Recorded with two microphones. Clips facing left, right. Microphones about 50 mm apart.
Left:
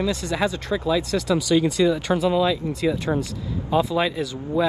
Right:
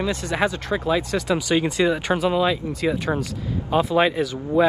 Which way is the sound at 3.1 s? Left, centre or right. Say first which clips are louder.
Left 1 dB; centre.